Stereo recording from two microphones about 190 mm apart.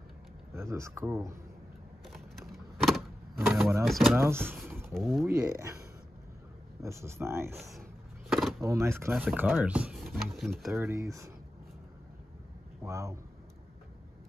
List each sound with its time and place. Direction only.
0.6 s speech: 15° right (ahead or behind)
2.1 s a sound: centre (ahead or behind)
3.3 s power windows: 10° right (ahead or behind)
3.8 s speech: centre (ahead or behind)
4.2 s speech: 10° right (ahead or behind)
4.9 s speech: centre (ahead or behind)
6.8 s speech: 15° right (ahead or behind)
8.3 s vehicle: centre (ahead or behind)
8.5 s speech: 15° right (ahead or behind); by 10.8 s centre (ahead or behind)
10.8 s speech: 15° right (ahead or behind)
12.8 s speech: 15° right (ahead or behind)